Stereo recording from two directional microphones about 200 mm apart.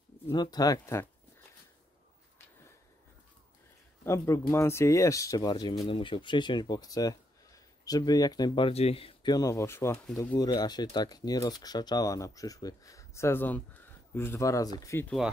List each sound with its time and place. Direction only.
0.3 s speech: 20° left (ahead or behind)
4.0 s speech: 15° left (ahead or behind)